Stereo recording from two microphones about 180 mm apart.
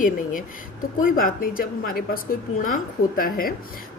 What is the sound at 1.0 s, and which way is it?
A woman's voice, 50° left (ahead or behind).